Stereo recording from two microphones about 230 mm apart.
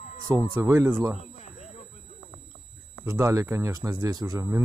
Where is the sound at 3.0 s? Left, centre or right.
Centre.